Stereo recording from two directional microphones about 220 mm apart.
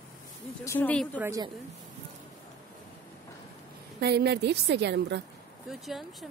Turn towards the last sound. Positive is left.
turn(degrees=0)  # may be behind; listen again after turning